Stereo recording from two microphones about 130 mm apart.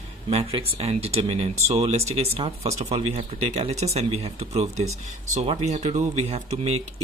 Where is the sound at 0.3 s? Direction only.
50° right (ahead or behind).